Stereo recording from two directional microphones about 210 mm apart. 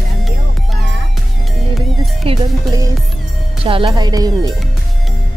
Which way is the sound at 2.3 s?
25° right (ahead or behind).